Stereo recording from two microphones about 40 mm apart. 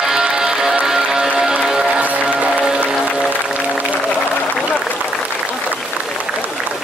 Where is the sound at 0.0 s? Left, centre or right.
Centre.